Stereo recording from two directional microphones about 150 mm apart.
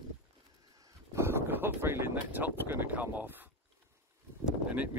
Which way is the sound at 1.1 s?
15° right (ahead or behind).